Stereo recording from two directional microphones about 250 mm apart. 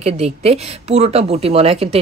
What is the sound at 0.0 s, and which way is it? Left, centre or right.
A woman's voice, right.